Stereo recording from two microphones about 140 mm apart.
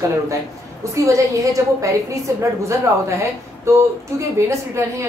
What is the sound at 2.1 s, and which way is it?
Speech, 20° right (ahead or behind).